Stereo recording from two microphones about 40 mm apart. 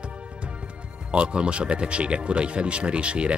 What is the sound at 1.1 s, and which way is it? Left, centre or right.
Speech, right.